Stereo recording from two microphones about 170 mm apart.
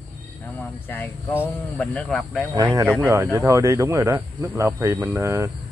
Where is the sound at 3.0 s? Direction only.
15° right (ahead or behind).